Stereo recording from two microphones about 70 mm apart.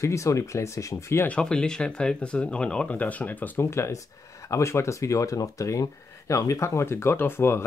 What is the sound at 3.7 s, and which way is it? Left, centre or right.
Speech, left.